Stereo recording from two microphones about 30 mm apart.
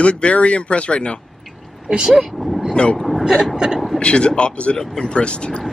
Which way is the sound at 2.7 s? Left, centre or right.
Left.